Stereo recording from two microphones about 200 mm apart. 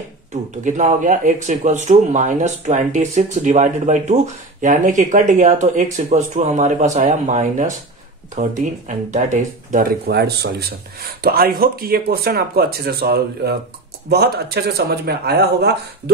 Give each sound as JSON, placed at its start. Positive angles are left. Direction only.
{"t": 0.3, "sound": "speech", "side_deg": -35}